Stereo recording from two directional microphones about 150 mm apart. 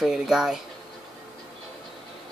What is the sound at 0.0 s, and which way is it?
Speech, 5° right (ahead or behind).